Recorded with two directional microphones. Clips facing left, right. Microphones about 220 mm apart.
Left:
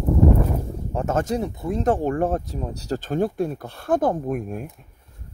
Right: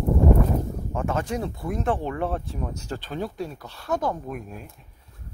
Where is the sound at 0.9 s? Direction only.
40° left (ahead or behind).